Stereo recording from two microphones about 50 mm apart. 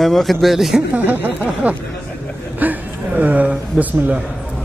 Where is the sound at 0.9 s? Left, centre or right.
Right.